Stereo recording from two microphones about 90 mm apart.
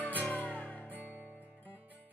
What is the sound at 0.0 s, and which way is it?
Music, 20° left (ahead or behind).